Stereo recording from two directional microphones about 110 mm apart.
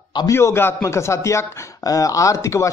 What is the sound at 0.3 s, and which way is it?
A man's voice, 25° left (ahead or behind).